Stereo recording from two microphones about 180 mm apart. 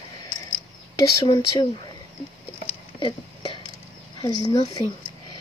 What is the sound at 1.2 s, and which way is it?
Speech, 20° left (ahead or behind).